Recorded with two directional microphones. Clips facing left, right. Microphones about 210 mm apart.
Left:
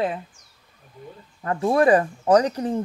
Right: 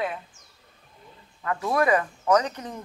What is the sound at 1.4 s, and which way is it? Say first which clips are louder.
Speech: left 5 dB; 30° left (ahead or behind).